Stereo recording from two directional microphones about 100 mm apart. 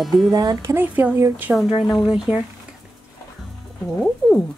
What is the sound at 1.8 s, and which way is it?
Speech, centre (ahead or behind).